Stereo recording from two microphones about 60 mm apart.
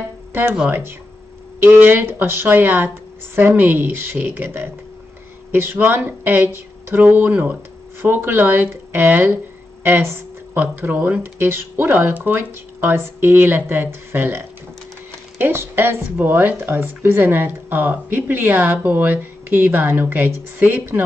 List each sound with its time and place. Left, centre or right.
0.3 s music: right
0.7 s speech: right
10.5 s speech: right
11.3 s speech: right